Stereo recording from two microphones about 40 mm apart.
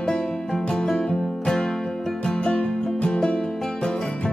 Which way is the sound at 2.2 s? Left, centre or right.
Centre.